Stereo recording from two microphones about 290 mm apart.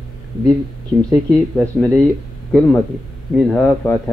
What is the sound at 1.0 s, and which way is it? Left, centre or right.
Speech, centre.